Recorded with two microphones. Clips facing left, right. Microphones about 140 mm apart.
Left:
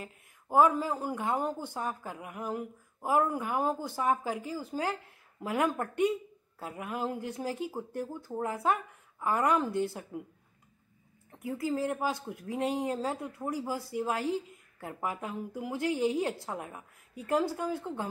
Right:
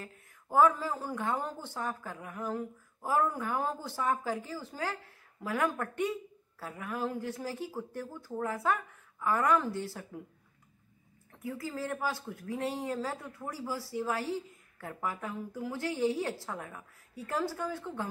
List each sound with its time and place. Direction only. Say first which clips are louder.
0.0 s a woman's voice: left 2 dB; 15° left (ahead or behind)
11.6 s speech: left 5 dB; 20° left (ahead or behind)